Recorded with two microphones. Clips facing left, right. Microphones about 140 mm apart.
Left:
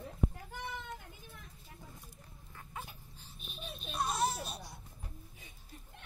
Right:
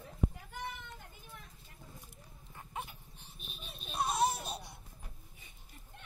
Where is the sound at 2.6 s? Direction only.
20° right (ahead or behind).